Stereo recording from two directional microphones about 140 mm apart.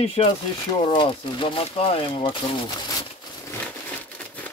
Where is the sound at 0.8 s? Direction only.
35° left (ahead or behind).